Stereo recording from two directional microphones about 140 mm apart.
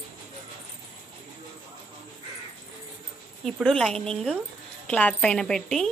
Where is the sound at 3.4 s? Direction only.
5° left (ahead or behind).